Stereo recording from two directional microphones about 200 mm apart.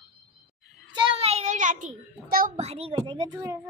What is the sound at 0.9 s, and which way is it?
A child's voice, 25° right (ahead or behind).